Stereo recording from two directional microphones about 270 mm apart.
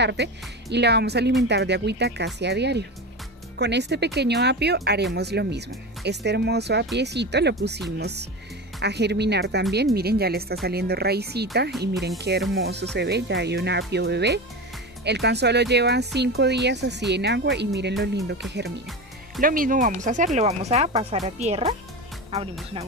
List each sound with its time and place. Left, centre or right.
0.0 s speech: right
19.4 s speech: right